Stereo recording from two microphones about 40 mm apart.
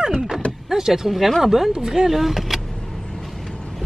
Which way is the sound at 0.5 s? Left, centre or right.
Centre.